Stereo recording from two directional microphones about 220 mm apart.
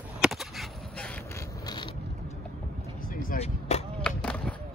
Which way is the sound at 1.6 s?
20° left (ahead or behind).